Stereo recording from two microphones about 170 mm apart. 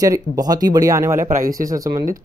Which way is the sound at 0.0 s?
20° right (ahead or behind).